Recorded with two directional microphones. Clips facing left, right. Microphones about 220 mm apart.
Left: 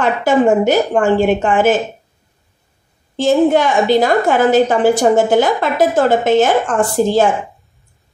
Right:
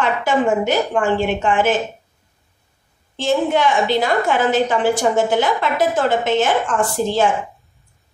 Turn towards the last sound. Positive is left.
turn(degrees=40)  # may be behind; listen again after turning